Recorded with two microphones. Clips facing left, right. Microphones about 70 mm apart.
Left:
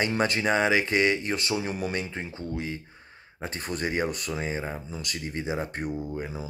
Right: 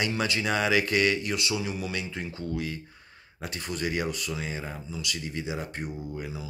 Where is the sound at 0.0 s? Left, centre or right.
Left.